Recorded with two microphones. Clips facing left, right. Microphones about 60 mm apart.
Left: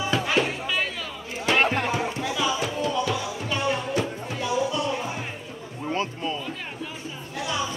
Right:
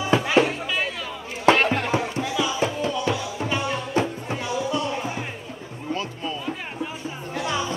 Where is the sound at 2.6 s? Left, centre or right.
Right.